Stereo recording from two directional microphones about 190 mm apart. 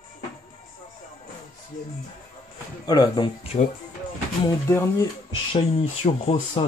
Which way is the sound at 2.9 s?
20° left (ahead or behind).